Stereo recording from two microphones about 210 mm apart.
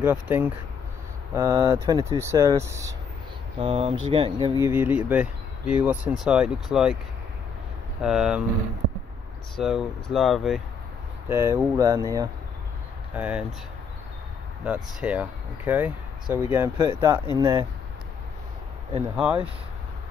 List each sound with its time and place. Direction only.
0.0 s speech: 10° right (ahead or behind)
3.5 s speech: 30° right (ahead or behind)
4.6 s speech: 10° right (ahead or behind)
8.0 s speech: 5° right (ahead or behind)
9.6 s speech: centre (ahead or behind)
11.2 s speech: 15° right (ahead or behind)
14.6 s speech: 5° right (ahead or behind)
19.1 s speech: 5° right (ahead or behind)